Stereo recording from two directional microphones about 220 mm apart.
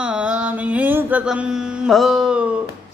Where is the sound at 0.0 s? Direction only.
5° right (ahead or behind).